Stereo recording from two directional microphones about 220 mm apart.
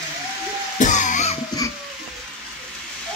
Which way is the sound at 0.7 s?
35° left (ahead or behind).